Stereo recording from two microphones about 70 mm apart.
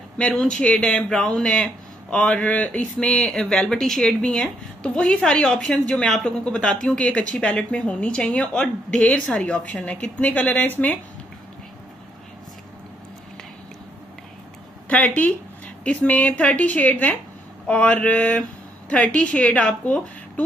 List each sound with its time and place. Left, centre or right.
0.3 s speech: centre; by 11.0 s left
14.9 s a woman's voice: left